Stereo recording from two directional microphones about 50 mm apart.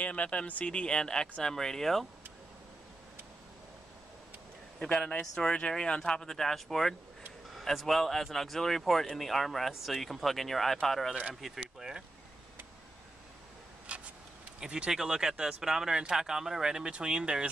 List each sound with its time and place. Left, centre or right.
0.0 s speech: left; by 2.0 s centre
5.2 s speech: centre
11.4 s speech: centre
14.6 s speech: centre